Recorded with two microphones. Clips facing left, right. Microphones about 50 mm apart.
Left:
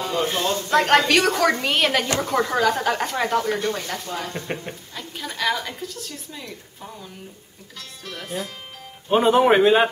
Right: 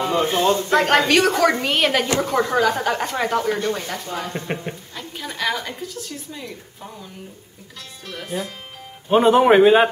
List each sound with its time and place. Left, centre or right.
0.0 s a sound: centre
0.3 s a woman's voice: centre
8.1 s a woman's voice: centre